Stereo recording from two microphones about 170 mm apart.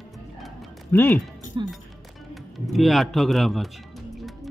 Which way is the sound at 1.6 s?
25° right (ahead or behind).